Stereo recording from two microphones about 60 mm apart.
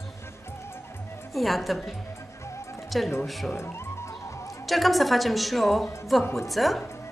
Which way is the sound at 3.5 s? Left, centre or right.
Left.